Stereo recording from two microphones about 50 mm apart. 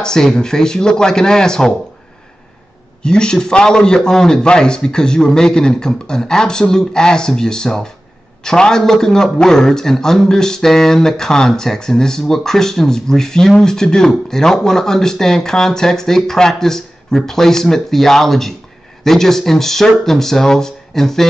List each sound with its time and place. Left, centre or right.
0.0 s a man's voice: centre
3.0 s a man's voice: centre